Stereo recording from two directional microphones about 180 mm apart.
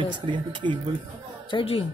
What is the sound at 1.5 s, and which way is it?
Speech, 30° left (ahead or behind).